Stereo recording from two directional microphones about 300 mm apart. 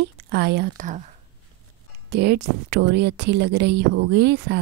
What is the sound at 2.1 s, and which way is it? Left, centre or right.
Speech, right.